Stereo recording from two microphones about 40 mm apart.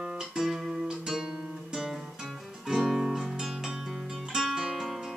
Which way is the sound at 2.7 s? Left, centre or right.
Centre.